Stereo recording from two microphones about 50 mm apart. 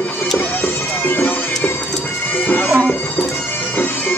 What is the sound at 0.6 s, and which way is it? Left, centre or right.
Bagpipes, left.